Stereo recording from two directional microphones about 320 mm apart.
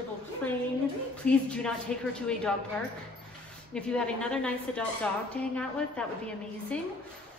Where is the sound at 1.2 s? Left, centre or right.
Centre.